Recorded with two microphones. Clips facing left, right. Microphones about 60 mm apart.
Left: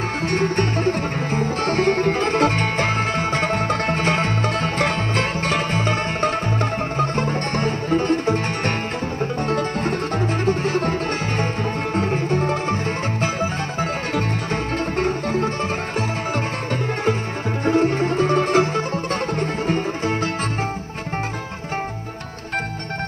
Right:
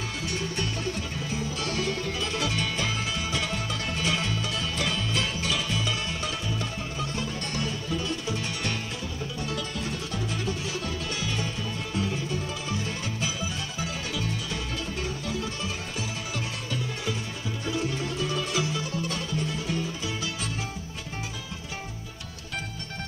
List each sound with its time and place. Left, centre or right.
0.3 s music: left
17.6 s music: left